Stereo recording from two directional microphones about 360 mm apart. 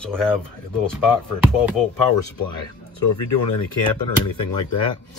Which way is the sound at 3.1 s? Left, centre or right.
Left.